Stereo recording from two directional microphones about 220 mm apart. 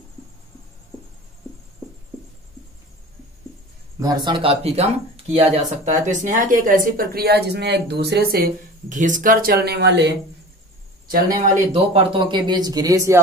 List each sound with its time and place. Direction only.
4.0 s speech: 20° right (ahead or behind); by 10.1 s 50° right (ahead or behind)
11.3 s speech: 35° right (ahead or behind); by 13.2 s 15° right (ahead or behind)